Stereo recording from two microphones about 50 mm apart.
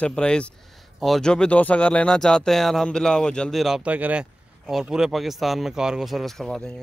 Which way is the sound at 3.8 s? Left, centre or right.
Right.